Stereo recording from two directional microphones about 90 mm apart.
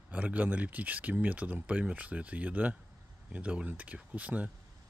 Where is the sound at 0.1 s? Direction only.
15° right (ahead or behind).